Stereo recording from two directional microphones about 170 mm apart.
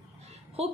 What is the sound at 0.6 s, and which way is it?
Speech, 35° right (ahead or behind).